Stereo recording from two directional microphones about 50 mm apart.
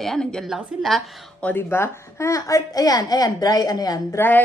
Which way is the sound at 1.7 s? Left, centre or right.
Left.